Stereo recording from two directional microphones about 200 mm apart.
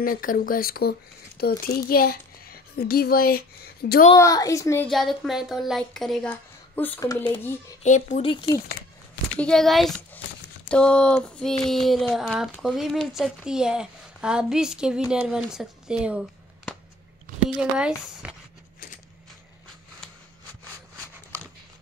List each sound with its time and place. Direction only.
0.0 s a child's voice: 45° left (ahead or behind)
4.1 s a woman's voice: 15° left (ahead or behind)
4.8 s speech: centre (ahead or behind); by 7.4 s 20° left (ahead or behind)
7.8 s speech: 35° left (ahead or behind)
9.4 s speech: centre (ahead or behind)